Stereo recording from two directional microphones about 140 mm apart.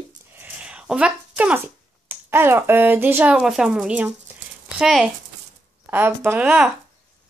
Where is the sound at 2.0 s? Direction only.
15° right (ahead or behind).